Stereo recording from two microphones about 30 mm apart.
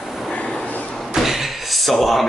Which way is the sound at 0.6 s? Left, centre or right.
Left.